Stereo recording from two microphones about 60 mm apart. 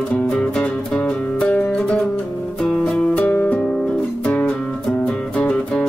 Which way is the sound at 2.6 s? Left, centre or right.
Centre.